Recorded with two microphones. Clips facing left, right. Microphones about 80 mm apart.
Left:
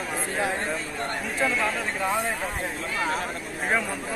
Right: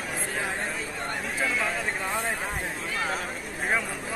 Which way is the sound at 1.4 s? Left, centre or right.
Centre.